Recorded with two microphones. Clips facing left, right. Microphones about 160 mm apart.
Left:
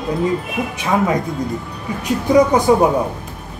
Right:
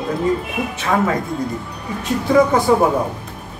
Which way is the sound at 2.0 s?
15° left (ahead or behind).